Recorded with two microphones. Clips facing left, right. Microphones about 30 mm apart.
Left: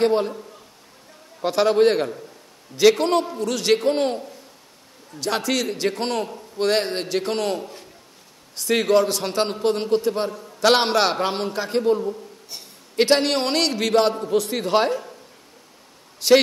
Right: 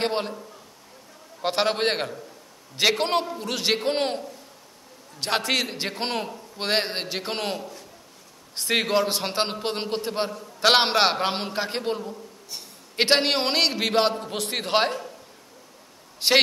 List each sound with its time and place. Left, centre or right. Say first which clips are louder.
0.0 s a man's voice: left 7 dB; right
1.4 s a man's voice: left 6 dB; right
5.2 s a man's voice: left 1 dB; right
5.9 s a man's voice: left 5 dB; centre
8.5 s a man's voice: left 4 dB; right
14.3 s a man's voice: left 5 dB; right
16.2 s a man's voice: left 6 dB; right